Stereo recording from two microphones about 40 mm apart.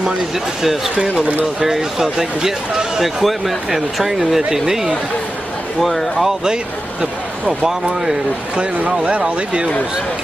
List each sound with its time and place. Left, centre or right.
0.6 s speech: centre
0.9 s speech: right
1.4 s speech: centre
4.2 s speech: centre
5.8 s speech: centre
6.2 s speech: centre
8.5 s speech: right